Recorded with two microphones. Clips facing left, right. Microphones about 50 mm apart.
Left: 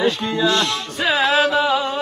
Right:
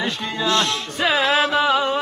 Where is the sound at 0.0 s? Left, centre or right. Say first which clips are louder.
Left 5 dB; centre.